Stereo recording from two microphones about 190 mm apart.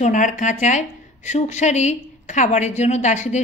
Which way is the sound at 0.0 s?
40° left (ahead or behind).